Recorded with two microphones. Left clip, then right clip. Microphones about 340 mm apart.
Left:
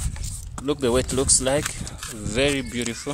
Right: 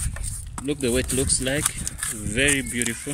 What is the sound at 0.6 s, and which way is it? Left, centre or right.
Speech, centre.